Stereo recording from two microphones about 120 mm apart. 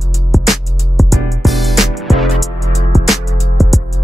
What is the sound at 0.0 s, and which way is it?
Music, centre (ahead or behind).